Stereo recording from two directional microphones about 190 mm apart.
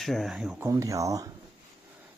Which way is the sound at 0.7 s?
15° right (ahead or behind).